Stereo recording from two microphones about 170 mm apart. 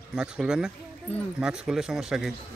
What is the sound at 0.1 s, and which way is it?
Speech, 5° right (ahead or behind).